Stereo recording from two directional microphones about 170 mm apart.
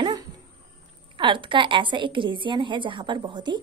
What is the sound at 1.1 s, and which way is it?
A woman's voice, 30° right (ahead or behind).